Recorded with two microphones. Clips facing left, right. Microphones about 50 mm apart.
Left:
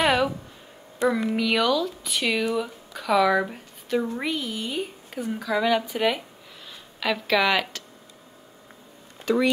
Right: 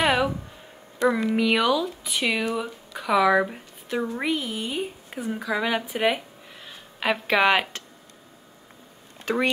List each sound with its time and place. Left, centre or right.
0.0 s a sound: centre
1.3 s speech: centre; by 7.8 s right
9.2 s speech: right